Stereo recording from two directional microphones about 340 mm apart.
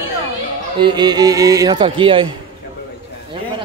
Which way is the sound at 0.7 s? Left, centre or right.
Centre.